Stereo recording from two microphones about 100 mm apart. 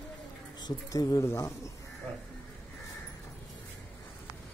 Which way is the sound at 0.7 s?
35° left (ahead or behind).